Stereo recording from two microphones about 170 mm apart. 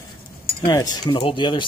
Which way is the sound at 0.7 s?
25° left (ahead or behind).